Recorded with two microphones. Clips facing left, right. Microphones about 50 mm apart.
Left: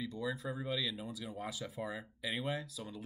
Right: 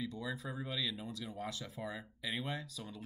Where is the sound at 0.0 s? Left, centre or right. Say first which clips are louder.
Left 2 dB; centre.